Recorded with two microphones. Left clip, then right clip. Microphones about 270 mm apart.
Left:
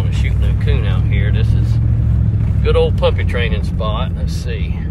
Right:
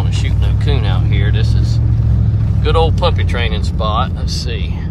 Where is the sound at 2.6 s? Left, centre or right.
Centre.